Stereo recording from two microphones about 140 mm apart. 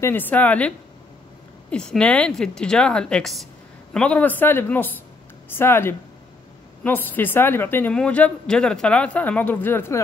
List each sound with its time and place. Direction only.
0.0 s a woman's voice: 15° left (ahead or behind)